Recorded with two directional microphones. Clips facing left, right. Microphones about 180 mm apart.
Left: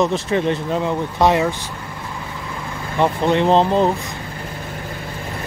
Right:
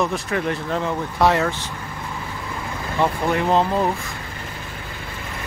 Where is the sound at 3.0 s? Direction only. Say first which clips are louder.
Left 4 dB; 25° left (ahead or behind).